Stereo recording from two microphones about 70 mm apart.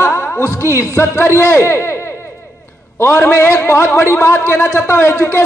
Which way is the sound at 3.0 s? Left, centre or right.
Left.